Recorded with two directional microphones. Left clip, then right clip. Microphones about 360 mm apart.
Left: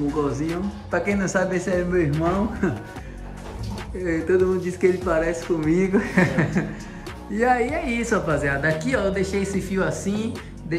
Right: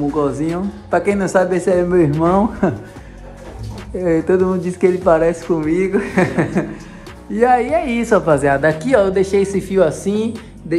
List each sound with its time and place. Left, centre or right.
0.3 s speech: centre
4.0 s a woman's voice: centre